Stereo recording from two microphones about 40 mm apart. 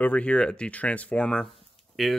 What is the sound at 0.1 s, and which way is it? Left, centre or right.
Speech, left.